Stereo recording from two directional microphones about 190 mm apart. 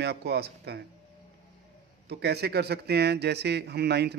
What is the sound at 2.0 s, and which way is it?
Speech, 60° right (ahead or behind).